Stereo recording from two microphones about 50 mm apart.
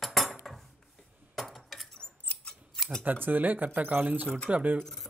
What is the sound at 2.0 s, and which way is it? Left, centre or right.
Scissors, centre.